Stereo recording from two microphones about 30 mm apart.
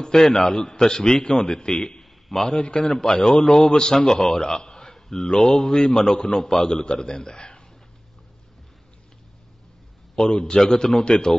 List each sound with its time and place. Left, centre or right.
0.0 s a man's voice: centre
2.3 s a man's voice: centre
2.6 s a man's voice: left
2.9 s a man's voice: centre
10.1 s a man's voice: left
10.6 s a man's voice: centre